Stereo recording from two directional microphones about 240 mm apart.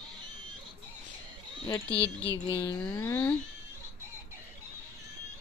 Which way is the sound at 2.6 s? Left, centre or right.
Centre.